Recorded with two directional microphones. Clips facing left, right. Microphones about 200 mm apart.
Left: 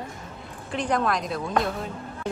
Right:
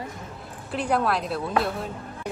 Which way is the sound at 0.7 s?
5° right (ahead or behind).